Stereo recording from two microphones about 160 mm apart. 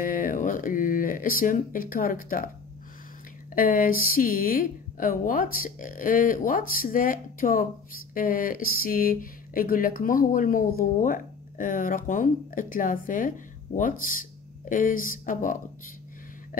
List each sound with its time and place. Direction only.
0.0 s speech: 60° left (ahead or behind)
3.5 s speech: 60° left (ahead or behind)